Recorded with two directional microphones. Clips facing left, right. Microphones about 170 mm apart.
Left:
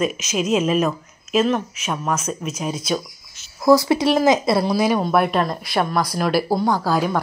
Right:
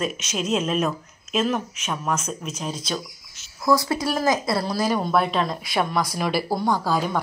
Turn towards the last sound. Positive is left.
turn(degrees=5)  # may be behind; listen again after turning